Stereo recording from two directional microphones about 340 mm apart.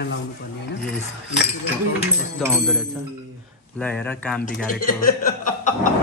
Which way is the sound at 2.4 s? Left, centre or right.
Centre.